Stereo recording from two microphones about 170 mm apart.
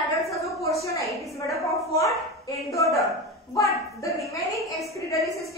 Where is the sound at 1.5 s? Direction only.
20° left (ahead or behind).